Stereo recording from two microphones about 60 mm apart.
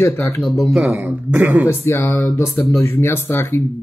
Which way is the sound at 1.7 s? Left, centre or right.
Left.